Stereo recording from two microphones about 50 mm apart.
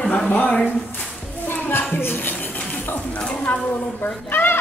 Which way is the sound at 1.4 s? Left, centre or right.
Left.